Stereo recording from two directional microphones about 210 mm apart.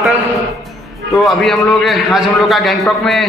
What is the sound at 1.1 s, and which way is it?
Speech, centre (ahead or behind).